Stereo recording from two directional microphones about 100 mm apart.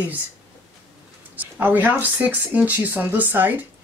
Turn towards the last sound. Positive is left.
turn(degrees=-20)  # may be behind; listen again after turning